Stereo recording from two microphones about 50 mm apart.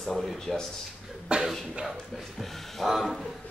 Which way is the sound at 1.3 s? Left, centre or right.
Right.